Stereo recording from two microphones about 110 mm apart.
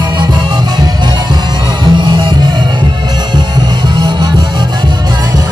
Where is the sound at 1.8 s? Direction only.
40° right (ahead or behind).